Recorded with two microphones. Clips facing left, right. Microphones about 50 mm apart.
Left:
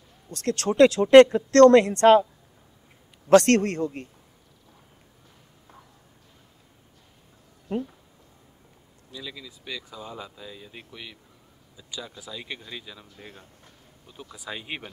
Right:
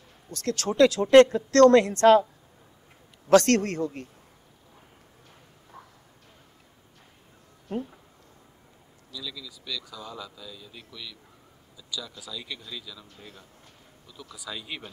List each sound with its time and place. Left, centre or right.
0.3 s speech: left
3.3 s speech: left
9.1 s speech: left
11.7 s a sound: left
12.2 s speech: left